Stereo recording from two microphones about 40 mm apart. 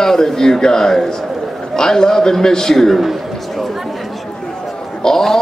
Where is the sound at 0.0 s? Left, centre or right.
Centre.